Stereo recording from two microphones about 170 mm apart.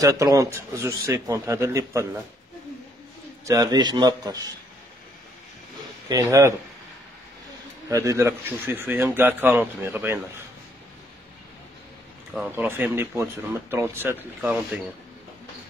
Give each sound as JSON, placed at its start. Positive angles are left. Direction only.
{"t": 0.0, "sound": "speech", "side_deg": -20}
{"t": 3.4, "sound": "a man's voice", "side_deg": -20}
{"t": 6.0, "sound": "a man's voice", "side_deg": -20}
{"t": 7.9, "sound": "speech", "side_deg": -15}
{"t": 12.4, "sound": "speech", "side_deg": -10}